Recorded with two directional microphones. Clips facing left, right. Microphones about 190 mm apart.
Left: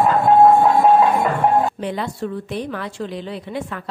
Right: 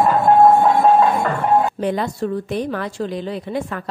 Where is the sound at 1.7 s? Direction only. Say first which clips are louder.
Right 4 dB; 45° right (ahead or behind).